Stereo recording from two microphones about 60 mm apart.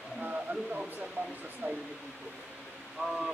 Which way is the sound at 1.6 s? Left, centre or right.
Right.